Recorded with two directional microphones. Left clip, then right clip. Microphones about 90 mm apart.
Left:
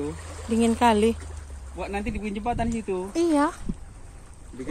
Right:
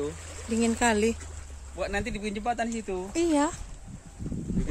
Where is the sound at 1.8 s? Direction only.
50° right (ahead or behind).